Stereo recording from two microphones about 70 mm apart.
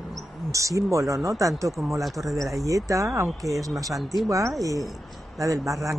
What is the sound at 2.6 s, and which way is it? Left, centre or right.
Speech, right.